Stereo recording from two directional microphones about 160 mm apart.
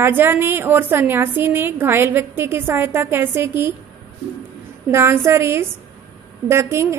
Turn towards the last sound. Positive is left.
turn(degrees=-15)  # may be behind; listen again after turning